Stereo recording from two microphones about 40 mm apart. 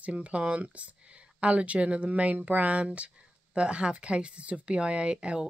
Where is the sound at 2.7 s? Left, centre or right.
Right.